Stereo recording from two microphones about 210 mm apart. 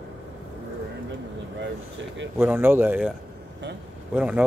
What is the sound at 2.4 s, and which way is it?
Speech, 10° right (ahead or behind).